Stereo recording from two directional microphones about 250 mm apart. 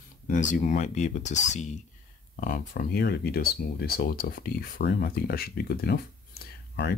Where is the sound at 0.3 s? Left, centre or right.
Left.